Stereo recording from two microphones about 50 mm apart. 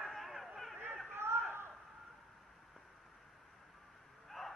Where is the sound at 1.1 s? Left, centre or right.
Right.